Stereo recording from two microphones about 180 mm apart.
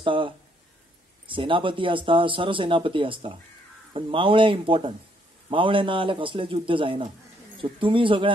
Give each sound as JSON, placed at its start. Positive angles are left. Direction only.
{"t": 0.0, "sound": "speech", "side_deg": -30}